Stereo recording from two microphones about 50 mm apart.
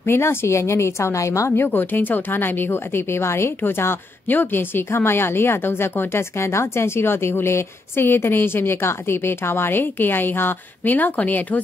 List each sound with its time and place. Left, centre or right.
0.0 s speech: left
0.6 s a woman's voice: left
1.6 s speech: left